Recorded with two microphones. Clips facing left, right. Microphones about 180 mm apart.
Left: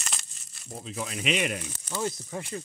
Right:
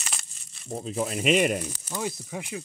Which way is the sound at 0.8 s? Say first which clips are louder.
Right 6 dB; 40° right (ahead or behind).